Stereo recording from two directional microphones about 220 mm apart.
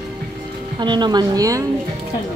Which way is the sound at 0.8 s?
20° right (ahead or behind).